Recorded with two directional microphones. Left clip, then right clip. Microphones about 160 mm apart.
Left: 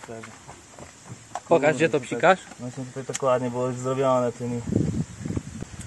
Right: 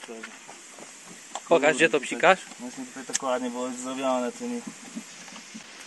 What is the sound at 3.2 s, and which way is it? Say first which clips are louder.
Speech: left 6 dB; 35° left (ahead or behind).